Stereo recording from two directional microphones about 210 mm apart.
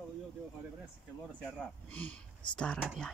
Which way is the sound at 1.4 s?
5° left (ahead or behind).